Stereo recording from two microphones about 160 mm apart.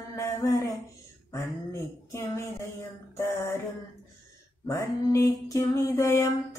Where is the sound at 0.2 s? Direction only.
20° left (ahead or behind).